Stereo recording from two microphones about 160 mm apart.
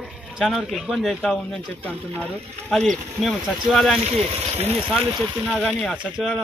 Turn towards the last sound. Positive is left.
turn(degrees=0)  # may be behind; listen again after turning